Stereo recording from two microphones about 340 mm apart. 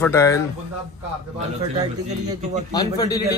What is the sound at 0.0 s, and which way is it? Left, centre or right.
Speech, centre.